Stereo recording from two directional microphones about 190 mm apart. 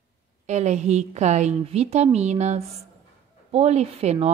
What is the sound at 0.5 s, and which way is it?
A woman's voice, 35° right (ahead or behind).